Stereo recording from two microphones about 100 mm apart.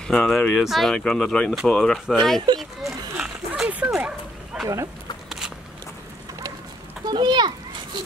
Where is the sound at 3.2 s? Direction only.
5° right (ahead or behind).